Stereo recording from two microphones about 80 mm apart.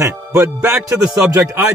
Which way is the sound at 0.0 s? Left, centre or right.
Right.